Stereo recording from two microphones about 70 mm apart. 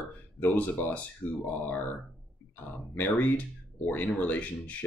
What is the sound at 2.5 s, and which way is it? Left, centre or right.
Speech, left.